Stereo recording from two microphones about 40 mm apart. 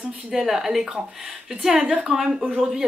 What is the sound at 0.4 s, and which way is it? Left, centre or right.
Speech, centre.